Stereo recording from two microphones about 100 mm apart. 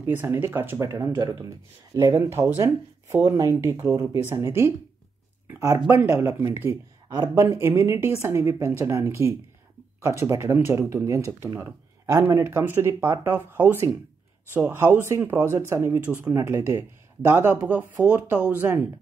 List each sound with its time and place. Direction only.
0.0 s speech: 20° right (ahead or behind)
16.3 s speech: 25° right (ahead or behind)